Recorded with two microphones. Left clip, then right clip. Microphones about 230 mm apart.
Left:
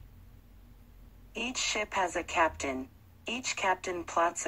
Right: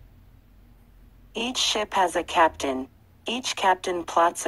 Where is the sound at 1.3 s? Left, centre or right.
Right.